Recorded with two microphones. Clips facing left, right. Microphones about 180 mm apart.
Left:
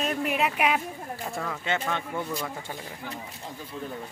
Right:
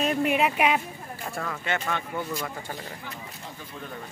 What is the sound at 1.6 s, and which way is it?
Speech, 20° left (ahead or behind).